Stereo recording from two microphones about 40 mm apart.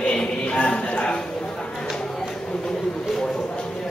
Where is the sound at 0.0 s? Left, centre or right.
Left.